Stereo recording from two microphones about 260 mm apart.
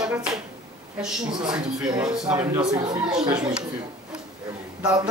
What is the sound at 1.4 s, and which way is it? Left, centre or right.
A man's voice, centre.